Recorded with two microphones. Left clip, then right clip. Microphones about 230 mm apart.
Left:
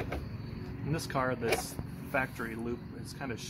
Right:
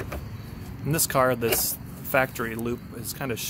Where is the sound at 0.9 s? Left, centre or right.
Right.